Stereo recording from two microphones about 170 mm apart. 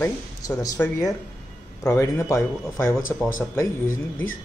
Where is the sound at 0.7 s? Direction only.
10° left (ahead or behind).